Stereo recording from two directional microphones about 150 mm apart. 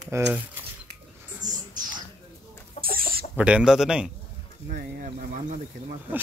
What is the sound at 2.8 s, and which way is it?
Chicken, 45° left (ahead or behind).